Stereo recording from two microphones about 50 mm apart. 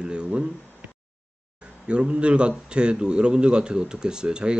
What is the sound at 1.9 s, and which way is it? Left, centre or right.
A man's voice, right.